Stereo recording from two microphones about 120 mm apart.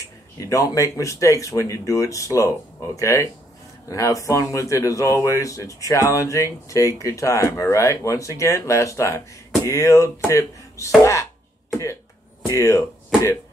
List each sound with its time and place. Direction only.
0.4 s speech: 25° left (ahead or behind)
12.5 s speech: 25° left (ahead or behind)